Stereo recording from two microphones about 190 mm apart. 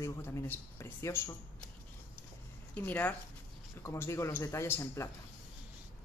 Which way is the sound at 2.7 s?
10° left (ahead or behind).